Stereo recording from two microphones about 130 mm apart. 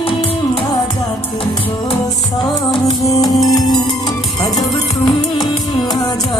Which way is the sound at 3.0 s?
30° left (ahead or behind).